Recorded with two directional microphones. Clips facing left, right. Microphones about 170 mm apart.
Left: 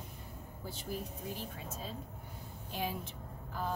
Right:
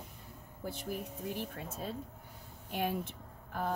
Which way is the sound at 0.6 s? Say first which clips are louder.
Right 2 dB; 60° right (ahead or behind).